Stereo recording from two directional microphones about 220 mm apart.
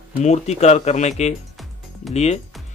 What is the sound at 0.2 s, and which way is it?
Speech, 30° left (ahead or behind).